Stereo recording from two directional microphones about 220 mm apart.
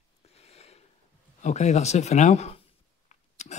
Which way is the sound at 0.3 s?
30° left (ahead or behind).